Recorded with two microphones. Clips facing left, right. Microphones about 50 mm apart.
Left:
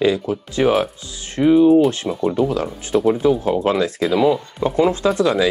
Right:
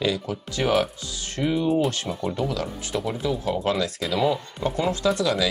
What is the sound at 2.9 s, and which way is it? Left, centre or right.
Speech, left.